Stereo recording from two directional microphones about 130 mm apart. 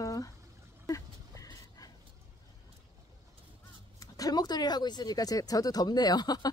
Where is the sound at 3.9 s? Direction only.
30° left (ahead or behind).